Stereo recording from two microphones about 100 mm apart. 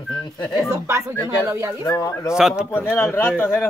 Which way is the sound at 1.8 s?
35° left (ahead or behind).